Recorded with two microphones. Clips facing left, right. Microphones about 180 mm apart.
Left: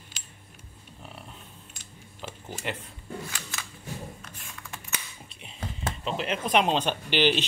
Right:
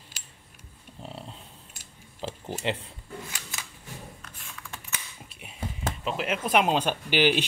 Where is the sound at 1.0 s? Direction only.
25° right (ahead or behind).